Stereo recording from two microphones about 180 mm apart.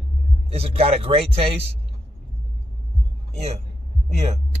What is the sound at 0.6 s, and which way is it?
Speech, 35° right (ahead or behind).